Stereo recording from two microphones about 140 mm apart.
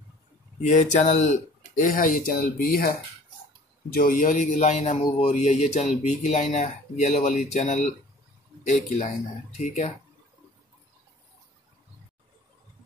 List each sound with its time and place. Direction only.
0.6 s speech: 60° left (ahead or behind); by 2.9 s 90° left
3.9 s a man's voice: 75° left (ahead or behind)
9.6 s speech: 50° left (ahead or behind)